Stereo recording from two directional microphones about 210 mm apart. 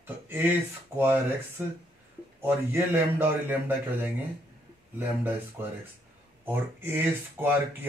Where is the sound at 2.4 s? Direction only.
10° right (ahead or behind).